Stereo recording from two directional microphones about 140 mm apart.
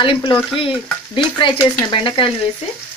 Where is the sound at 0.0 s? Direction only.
35° left (ahead or behind).